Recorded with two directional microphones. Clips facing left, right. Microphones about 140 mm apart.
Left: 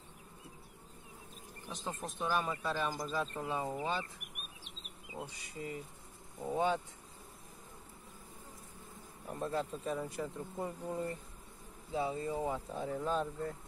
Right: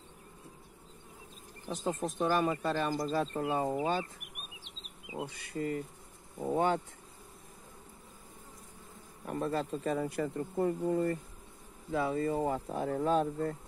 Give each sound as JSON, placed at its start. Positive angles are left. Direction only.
{"t": 1.7, "sound": "speech", "side_deg": -45}
{"t": 5.2, "sound": "speech", "side_deg": -60}
{"t": 9.2, "sound": "speech", "side_deg": -90}
{"t": 11.9, "sound": "speech", "side_deg": -65}